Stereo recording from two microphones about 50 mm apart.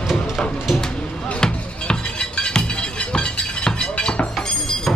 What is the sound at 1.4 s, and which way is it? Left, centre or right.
Music, centre.